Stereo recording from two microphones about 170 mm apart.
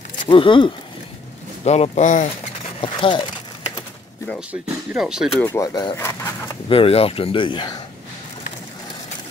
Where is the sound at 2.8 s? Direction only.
30° left (ahead or behind).